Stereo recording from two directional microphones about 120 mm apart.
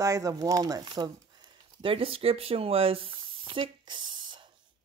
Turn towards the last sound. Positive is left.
turn(degrees=-40)  # may be behind; listen again after turning